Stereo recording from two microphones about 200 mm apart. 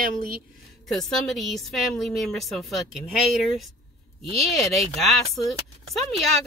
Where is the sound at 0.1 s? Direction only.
45° right (ahead or behind).